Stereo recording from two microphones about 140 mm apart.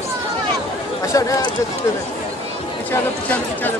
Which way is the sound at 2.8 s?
10° left (ahead or behind).